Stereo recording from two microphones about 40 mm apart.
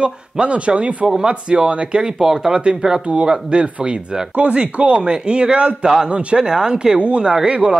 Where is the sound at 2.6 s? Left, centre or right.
Right.